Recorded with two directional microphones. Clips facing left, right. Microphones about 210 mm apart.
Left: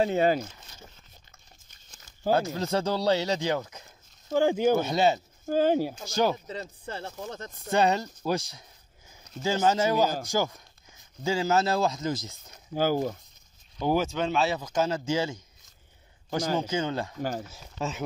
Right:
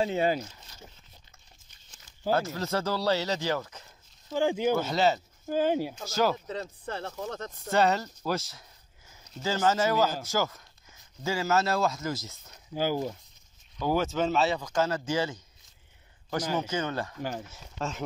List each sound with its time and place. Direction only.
0.0 s speech: 50° left (ahead or behind)
1.7 s a sound: 45° left (ahead or behind)
2.3 s speech: 15° left (ahead or behind)
4.3 s speech: 45° left (ahead or behind)
4.7 s speech: 15° left (ahead or behind)
5.5 s speech: 45° left (ahead or behind)
6.1 s speech: 15° left (ahead or behind)
9.4 s speech: 15° left (ahead or behind)
12.7 s speech: 45° left (ahead or behind)
13.7 s speech: 15° left (ahead or behind)
14.0 s speech: 5° right (ahead or behind)
16.5 s speech: 10° left (ahead or behind)
17.2 s speech: 40° left (ahead or behind)
17.5 s speech: 5° left (ahead or behind)